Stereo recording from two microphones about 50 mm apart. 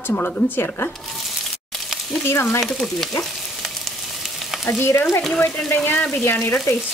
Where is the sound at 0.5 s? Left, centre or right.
Left.